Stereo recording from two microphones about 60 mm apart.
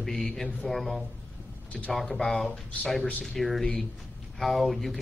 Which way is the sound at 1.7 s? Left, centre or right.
Left.